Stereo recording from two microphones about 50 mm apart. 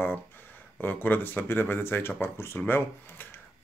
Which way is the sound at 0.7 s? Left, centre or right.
Left.